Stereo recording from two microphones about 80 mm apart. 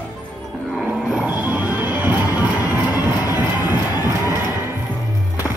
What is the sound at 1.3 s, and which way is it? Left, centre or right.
Music, right.